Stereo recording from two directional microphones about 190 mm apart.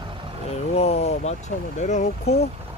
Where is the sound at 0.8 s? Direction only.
35° left (ahead or behind).